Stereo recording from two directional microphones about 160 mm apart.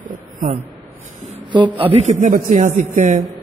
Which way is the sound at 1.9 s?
45° right (ahead or behind).